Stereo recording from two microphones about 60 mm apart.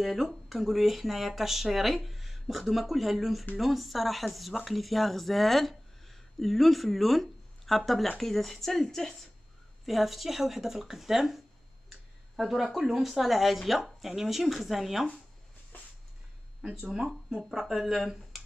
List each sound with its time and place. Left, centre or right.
0.0 s speech: centre
16.9 s speech: centre
17.4 s speech: centre